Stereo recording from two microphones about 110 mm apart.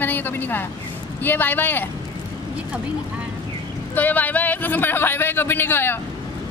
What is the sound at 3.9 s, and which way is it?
A man's voice, 15° left (ahead or behind).